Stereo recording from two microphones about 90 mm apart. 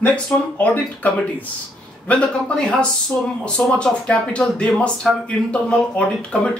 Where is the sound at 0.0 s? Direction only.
15° left (ahead or behind).